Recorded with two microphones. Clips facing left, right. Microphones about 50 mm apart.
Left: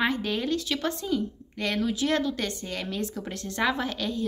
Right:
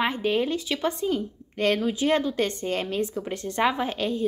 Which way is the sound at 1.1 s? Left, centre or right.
Right.